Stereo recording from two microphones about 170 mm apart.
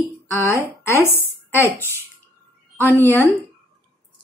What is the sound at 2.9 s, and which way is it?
Speech, 15° left (ahead or behind).